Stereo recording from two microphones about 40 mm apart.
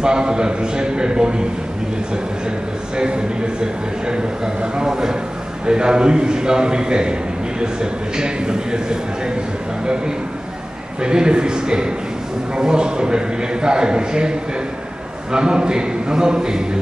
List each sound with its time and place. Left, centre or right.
0.0 s a man's voice: centre
4.1 s a man's voice: right
11.0 s a man's voice: right
15.3 s a man's voice: right